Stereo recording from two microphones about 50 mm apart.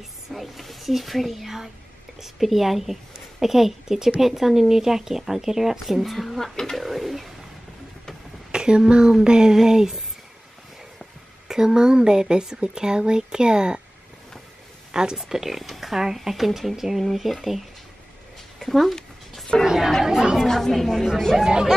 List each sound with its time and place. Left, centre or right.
0.3 s a woman's voice: centre
8.5 s speech: centre
11.4 s speech: centre
14.9 s a woman's voice: centre
18.6 s a sound: centre
19.6 s chatter: centre
20.1 s speech: centre
20.4 s a woman's voice: centre
21.4 s speech: centre